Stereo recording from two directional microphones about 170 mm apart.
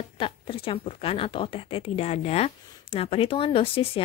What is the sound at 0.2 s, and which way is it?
A woman's voice, 30° left (ahead or behind).